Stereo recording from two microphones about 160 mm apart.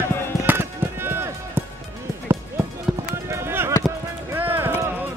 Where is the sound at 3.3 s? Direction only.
15° right (ahead or behind).